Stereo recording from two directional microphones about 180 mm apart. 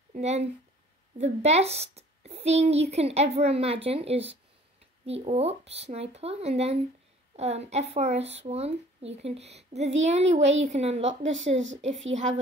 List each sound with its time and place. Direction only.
0.1 s speech: 35° right (ahead or behind)